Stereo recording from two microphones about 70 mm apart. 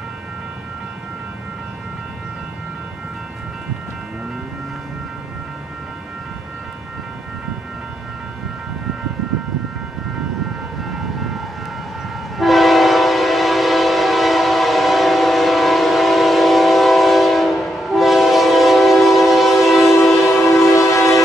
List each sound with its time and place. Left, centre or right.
12.4 s train: centre
20.2 s train: left